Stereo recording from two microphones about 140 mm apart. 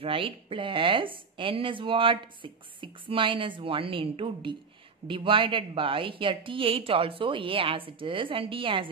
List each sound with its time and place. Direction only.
0.0 s a woman's voice: 40° right (ahead or behind)